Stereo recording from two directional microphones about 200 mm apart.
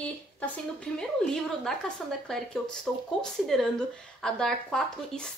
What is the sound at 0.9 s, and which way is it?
Speech, 5° left (ahead or behind).